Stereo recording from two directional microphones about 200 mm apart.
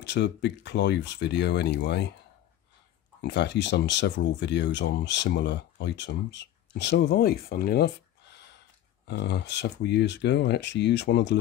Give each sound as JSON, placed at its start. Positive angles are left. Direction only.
{"t": 0.0, "sound": "speech", "side_deg": 60}
{"t": 3.2, "sound": "speech", "side_deg": 60}